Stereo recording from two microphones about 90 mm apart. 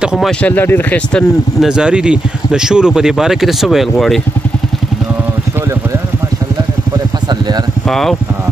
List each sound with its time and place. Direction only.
0.0 s speech: 5° right (ahead or behind)
0.4 s speech: 20° left (ahead or behind)
1.6 s speech: 10° right (ahead or behind)
7.9 s speech: 5° left (ahead or behind)